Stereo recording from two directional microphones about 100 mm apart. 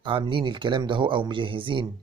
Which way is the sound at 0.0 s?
60° right (ahead or behind).